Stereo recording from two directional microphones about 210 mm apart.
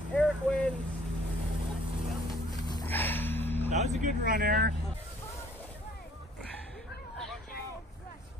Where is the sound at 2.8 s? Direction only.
10° left (ahead or behind).